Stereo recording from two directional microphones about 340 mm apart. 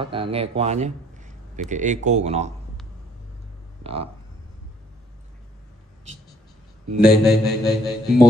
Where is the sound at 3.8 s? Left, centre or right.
Centre.